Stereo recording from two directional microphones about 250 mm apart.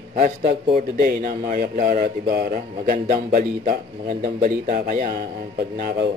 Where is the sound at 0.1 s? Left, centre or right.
Right.